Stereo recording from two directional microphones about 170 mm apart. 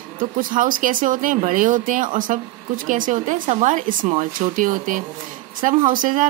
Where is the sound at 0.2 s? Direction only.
50° right (ahead or behind).